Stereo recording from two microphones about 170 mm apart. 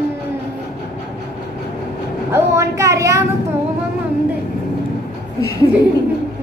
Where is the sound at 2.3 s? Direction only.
15° right (ahead or behind).